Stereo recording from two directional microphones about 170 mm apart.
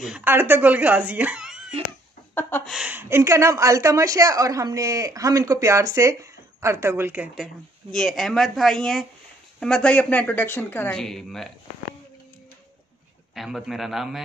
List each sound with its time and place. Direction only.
0.0 s speech: 10° right (ahead or behind)
2.3 s a woman's voice: 10° left (ahead or behind)
2.7 s speech: 10° right (ahead or behind)
7.9 s a woman's voice: centre (ahead or behind)
13.3 s speech: centre (ahead or behind)